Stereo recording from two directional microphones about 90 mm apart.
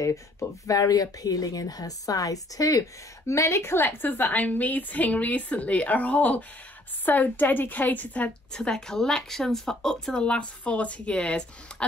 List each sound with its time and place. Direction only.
0.0 s a woman's voice: 35° left (ahead or behind); by 11.4 s 10° left (ahead or behind)